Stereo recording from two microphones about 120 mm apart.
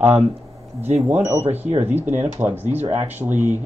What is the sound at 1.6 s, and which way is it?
Speech, 65° right (ahead or behind).